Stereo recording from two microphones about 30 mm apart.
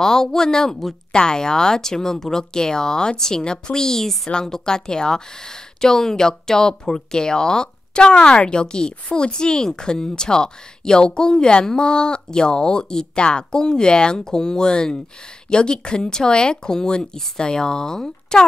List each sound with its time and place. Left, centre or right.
0.0 s speech: centre